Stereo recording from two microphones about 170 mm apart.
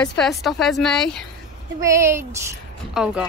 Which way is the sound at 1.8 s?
15° right (ahead or behind).